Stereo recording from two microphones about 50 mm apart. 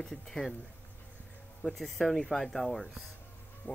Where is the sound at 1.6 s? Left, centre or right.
Centre.